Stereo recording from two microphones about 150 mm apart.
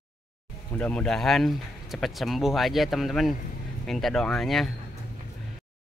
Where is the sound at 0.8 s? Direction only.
10° left (ahead or behind).